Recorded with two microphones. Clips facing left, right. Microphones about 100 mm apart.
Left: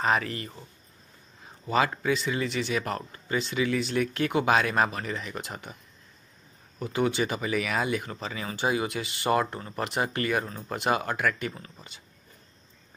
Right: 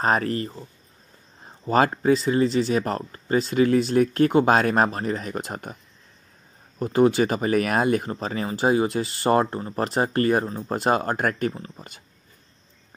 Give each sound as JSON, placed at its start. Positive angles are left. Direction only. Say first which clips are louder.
{"t": 0.0, "sound": "speech", "louder": "right 4 dB", "side_deg": -40}
{"t": 6.8, "sound": "speech", "louder": "right 8 dB", "side_deg": -40}
{"t": 11.5, "sound": "speech", "louder": "right 7 dB", "side_deg": -25}